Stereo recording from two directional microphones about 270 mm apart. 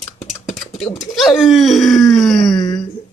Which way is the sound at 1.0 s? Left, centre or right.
Centre.